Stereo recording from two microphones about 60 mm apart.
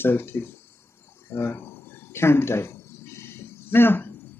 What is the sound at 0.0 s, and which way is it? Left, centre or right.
Speech, left.